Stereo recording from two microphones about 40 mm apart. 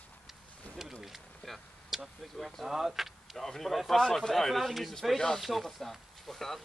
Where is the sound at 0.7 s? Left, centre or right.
Centre.